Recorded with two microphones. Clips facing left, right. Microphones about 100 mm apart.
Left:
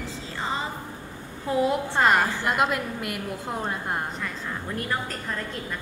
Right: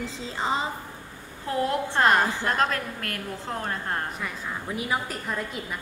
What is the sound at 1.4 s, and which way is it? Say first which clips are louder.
A woman's voice: left 2 dB; 5° left (ahead or behind).